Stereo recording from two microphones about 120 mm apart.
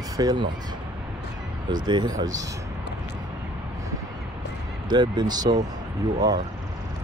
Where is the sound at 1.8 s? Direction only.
40° right (ahead or behind).